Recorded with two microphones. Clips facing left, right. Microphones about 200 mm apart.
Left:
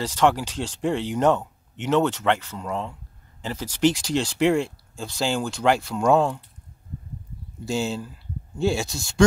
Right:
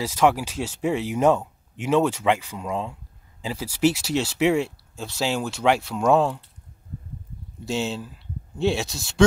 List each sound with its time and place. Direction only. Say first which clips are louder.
0.0 s speech: even; 10° right (ahead or behind)
7.6 s speech: left 1 dB; centre (ahead or behind)